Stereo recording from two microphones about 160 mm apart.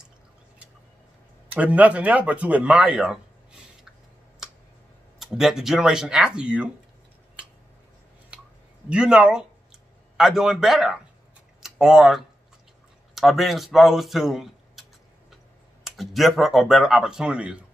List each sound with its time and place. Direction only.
1.5 s a man's voice: 10° right (ahead or behind)
5.2 s speech: centre (ahead or behind)
8.8 s speech: 5° right (ahead or behind)